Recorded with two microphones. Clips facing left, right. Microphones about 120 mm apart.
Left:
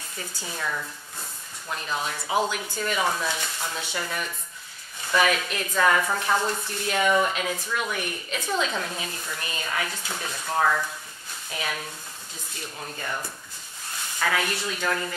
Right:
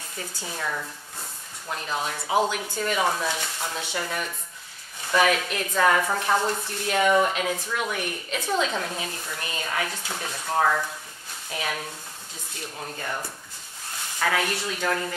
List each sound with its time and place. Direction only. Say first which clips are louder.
0.5 s speech: even; 35° right (ahead or behind); by 9.7 s 50° right (ahead or behind)
9.7 s speech: right 1 dB; 40° right (ahead or behind)